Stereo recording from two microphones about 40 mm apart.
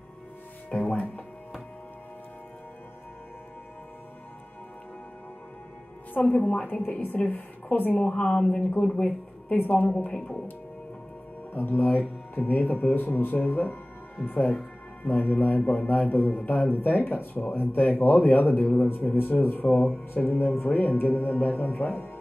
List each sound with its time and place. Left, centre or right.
0.7 s music: left
6.3 s a woman's voice: left
6.6 s speech: left
8.1 s a woman's voice: left
8.5 s speech: left
8.8 s speech: left
9.5 s a woman's voice: left
11.5 s speech: left